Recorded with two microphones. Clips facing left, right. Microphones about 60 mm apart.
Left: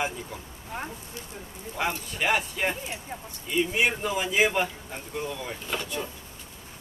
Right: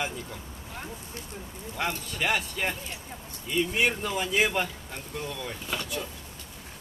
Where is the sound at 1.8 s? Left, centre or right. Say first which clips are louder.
Left 2 dB; centre.